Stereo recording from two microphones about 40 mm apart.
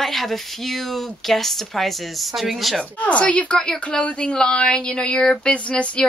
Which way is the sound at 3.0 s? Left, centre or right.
Left.